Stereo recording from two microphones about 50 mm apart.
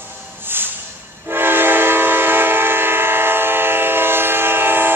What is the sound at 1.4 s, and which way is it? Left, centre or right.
Train, right.